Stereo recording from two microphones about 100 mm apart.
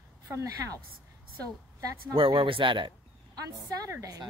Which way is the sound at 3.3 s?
40° right (ahead or behind).